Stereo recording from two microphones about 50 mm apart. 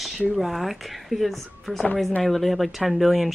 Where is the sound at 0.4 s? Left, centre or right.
Centre.